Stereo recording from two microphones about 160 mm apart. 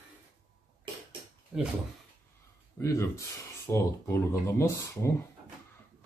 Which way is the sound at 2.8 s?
20° left (ahead or behind).